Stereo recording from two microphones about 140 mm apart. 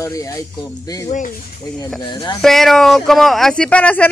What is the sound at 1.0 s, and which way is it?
Speech, 65° left (ahead or behind).